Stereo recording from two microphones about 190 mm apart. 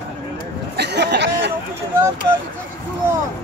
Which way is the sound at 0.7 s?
60° right (ahead or behind).